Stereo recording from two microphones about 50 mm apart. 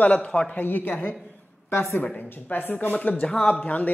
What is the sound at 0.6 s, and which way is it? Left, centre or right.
Speech, left.